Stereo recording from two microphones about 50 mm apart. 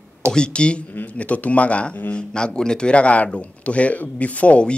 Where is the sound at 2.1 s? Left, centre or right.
Centre.